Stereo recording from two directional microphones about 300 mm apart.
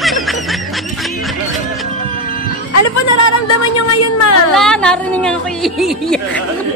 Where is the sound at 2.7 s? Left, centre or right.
Left.